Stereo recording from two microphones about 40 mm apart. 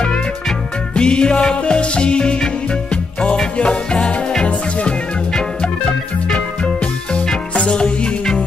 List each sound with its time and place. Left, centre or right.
0.9 s music: left
6.2 s music: left